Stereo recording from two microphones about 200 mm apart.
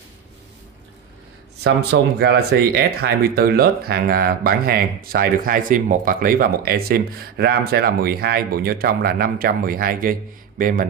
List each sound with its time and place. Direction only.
1.6 s speech: 55° right (ahead or behind)